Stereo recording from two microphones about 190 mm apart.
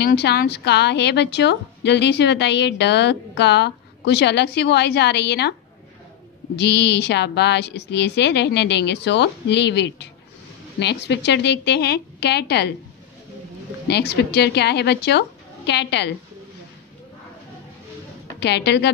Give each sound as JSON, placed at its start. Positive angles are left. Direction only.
{"t": 0.0, "sound": "a woman's voice", "side_deg": 60}
{"t": 6.6, "sound": "a woman's voice", "side_deg": 65}
{"t": 13.8, "sound": "a woman's voice", "side_deg": 60}
{"t": 18.4, "sound": "a woman's voice", "side_deg": 60}